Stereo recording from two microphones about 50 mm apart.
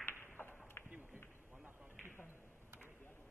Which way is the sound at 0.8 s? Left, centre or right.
Left.